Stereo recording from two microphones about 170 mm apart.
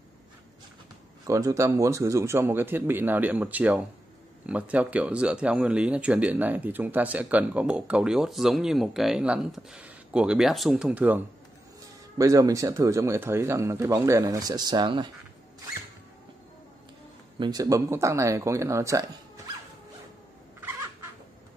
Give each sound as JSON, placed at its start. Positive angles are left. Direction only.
{"t": 1.2, "sound": "speech", "side_deg": -20}
{"t": 17.4, "sound": "speech", "side_deg": -25}